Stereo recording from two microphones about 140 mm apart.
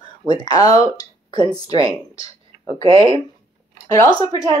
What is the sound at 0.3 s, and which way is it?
Speech, 30° left (ahead or behind).